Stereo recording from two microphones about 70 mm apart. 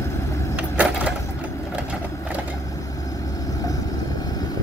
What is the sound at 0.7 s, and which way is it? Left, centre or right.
Wood, centre.